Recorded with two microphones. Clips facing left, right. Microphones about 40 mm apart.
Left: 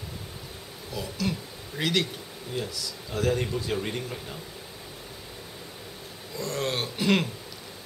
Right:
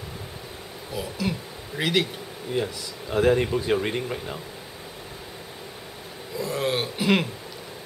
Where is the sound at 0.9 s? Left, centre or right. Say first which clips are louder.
Right 2 dB; centre.